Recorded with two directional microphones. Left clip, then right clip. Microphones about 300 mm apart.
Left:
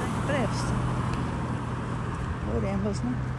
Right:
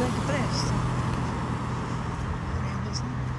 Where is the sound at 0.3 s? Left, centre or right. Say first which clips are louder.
Even; centre.